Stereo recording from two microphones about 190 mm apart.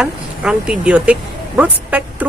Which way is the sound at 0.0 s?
5° right (ahead or behind).